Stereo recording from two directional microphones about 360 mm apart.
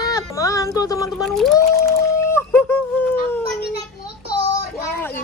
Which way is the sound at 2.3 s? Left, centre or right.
Centre.